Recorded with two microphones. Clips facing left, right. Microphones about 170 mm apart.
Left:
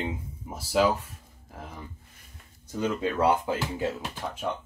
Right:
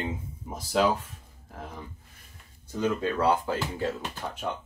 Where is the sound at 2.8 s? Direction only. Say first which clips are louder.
Even; 20° left (ahead or behind).